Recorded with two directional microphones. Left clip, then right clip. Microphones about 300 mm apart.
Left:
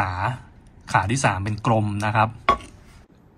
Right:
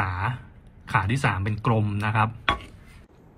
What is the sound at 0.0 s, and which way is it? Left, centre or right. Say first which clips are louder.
Speech: left 3 dB; centre.